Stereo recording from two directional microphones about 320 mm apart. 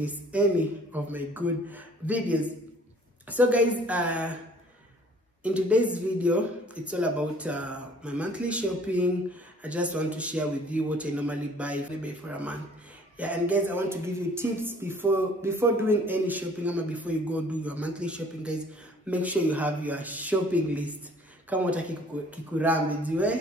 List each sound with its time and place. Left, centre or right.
0.0 s speech: centre
5.4 s speech: centre